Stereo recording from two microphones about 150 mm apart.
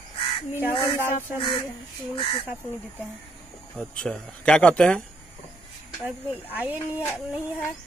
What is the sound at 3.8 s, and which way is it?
Speech, 5° left (ahead or behind).